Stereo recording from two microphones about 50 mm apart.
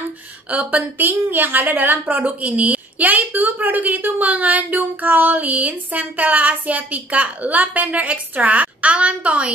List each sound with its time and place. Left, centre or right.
0.5 s a woman's voice: right